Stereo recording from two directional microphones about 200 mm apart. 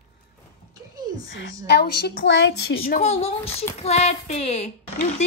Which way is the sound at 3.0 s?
30° left (ahead or behind).